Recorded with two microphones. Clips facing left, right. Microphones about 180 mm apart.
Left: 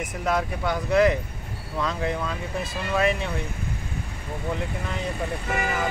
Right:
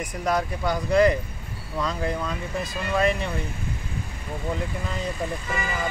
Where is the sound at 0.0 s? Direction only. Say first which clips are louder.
Even; 5° left (ahead or behind).